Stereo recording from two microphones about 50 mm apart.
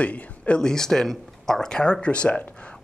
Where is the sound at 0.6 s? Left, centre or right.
Centre.